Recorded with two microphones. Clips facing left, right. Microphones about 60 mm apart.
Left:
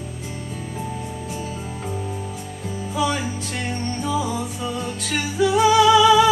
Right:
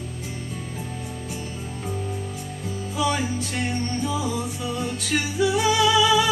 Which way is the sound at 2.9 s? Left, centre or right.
Left.